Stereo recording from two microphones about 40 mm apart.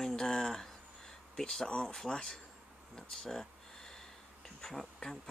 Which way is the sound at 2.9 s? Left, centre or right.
Centre.